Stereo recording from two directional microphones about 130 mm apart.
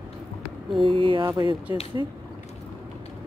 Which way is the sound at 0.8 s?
40° right (ahead or behind).